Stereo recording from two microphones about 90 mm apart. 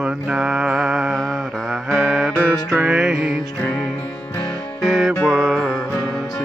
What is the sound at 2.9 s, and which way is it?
Music, 5° right (ahead or behind).